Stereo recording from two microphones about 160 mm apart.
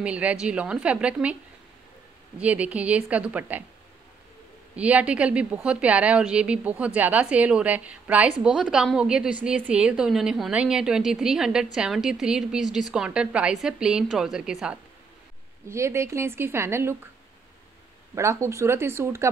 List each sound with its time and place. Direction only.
0.0 s a woman's voice: 10° right (ahead or behind)
2.3 s a woman's voice: 10° right (ahead or behind)
4.7 s a woman's voice: 10° right (ahead or behind)
15.7 s a woman's voice: 15° right (ahead or behind)
18.1 s a woman's voice: 20° right (ahead or behind)